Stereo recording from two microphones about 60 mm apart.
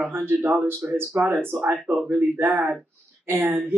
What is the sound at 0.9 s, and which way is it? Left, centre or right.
Speech, right.